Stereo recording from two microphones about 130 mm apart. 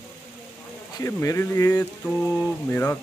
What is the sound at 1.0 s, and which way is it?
Speech, 20° left (ahead or behind).